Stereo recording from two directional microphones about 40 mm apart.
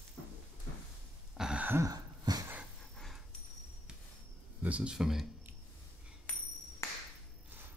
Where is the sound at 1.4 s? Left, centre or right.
Centre.